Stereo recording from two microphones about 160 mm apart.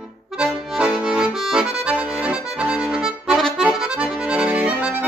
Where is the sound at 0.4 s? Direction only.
5° right (ahead or behind).